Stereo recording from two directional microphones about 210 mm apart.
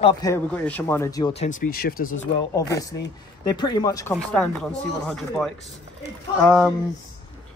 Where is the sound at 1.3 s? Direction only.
30° left (ahead or behind).